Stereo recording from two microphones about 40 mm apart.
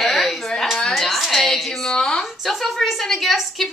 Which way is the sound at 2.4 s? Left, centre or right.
Centre.